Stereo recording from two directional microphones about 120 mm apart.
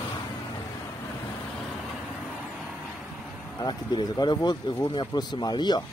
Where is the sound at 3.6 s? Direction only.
35° left (ahead or behind).